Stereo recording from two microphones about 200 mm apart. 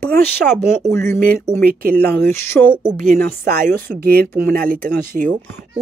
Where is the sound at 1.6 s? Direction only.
50° right (ahead or behind).